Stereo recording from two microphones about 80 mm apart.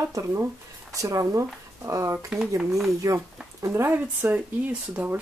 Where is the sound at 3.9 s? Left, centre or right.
Right.